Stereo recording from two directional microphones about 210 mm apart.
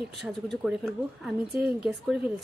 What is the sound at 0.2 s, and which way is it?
A woman's voice, centre (ahead or behind).